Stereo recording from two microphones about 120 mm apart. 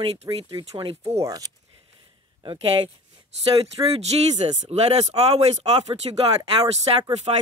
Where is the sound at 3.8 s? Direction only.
30° right (ahead or behind).